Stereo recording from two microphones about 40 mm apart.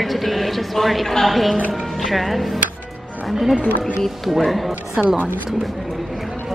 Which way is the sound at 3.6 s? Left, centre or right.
Left.